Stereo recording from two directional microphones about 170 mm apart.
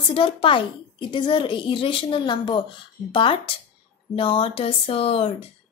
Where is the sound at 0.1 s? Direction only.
30° left (ahead or behind).